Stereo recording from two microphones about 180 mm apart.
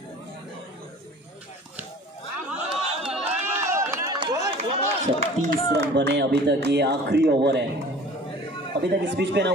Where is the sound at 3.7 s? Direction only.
15° right (ahead or behind).